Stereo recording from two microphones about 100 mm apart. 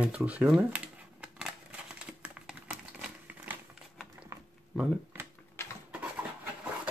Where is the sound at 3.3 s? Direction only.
15° right (ahead or behind).